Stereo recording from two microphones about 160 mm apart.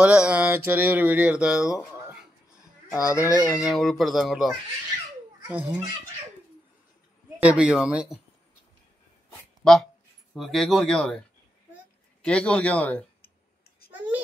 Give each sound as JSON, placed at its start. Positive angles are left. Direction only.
{"t": 0.0, "sound": "speech", "side_deg": -5}
{"t": 2.9, "sound": "speech", "side_deg": 20}
{"t": 3.5, "sound": "speech", "side_deg": 0}
{"t": 7.3, "sound": "speech", "side_deg": -10}
{"t": 9.6, "sound": "speech", "side_deg": 5}
{"t": 13.2, "sound": "clicking", "side_deg": 75}
{"t": 13.9, "sound": "baby cry", "side_deg": -10}